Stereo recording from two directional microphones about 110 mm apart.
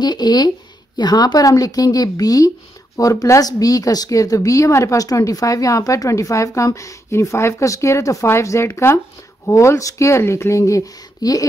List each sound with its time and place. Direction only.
0.0 s speech: 40° left (ahead or behind)